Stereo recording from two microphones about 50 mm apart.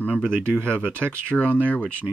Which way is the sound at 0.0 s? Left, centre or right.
Left.